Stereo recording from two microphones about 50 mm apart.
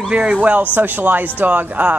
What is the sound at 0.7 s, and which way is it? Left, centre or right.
Speech, right.